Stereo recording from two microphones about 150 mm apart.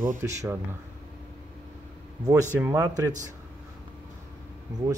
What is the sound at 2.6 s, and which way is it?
Speech, 15° right (ahead or behind).